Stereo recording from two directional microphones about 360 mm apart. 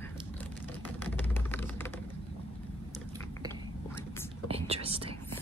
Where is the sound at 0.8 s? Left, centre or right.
Centre.